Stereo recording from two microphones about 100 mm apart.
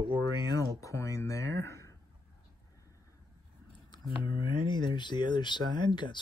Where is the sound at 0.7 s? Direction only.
30° left (ahead or behind).